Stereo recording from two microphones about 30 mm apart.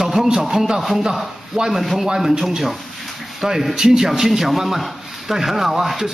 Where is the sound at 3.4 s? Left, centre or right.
Centre.